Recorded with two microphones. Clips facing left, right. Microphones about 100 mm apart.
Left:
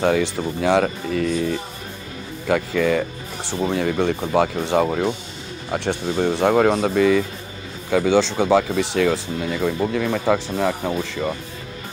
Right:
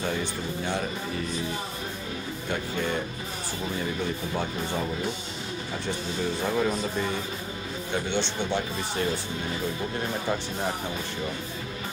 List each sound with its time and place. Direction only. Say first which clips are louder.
0.0 s speech: left 10 dB; 90° left